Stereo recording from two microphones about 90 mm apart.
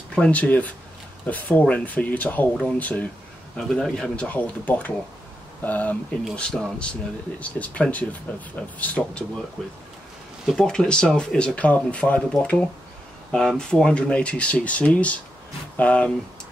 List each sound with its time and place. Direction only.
0.1 s speech: 15° left (ahead or behind)
4.3 s speech: 15° left (ahead or behind)